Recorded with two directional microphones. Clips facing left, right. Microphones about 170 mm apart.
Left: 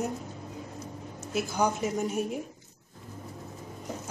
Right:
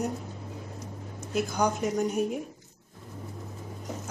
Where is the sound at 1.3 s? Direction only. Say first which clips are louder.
Right 1 dB; 5° left (ahead or behind).